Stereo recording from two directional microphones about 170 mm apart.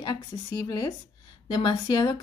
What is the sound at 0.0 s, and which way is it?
Speech, 25° left (ahead or behind).